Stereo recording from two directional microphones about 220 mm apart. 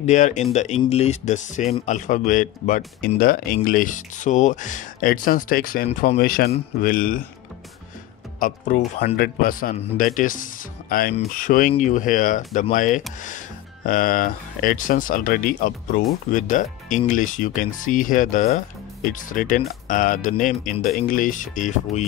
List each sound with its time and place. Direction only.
0.0 s speech: 35° left (ahead or behind)
8.4 s speech: 35° left (ahead or behind)